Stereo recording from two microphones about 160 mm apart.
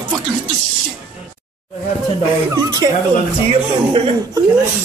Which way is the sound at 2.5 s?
25° right (ahead or behind).